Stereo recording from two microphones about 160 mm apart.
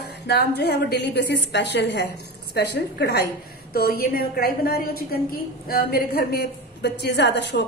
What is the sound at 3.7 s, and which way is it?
A woman's voice, 70° left (ahead or behind).